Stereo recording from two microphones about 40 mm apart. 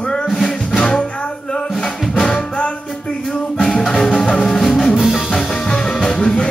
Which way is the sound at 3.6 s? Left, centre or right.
Centre.